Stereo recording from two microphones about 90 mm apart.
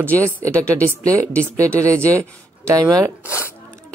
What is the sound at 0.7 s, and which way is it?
Speech, 15° left (ahead or behind).